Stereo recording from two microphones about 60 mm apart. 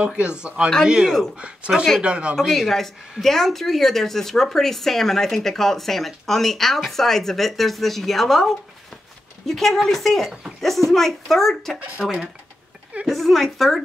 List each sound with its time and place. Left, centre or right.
0.0 s a man's voice: centre
1.0 s speech: centre
2.0 s a man's voice: centre
2.3 s speech: centre
12.0 s a man's voice: centre
13.0 s speech: centre